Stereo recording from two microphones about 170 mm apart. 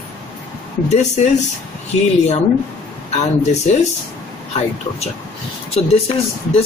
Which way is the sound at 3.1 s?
40° left (ahead or behind).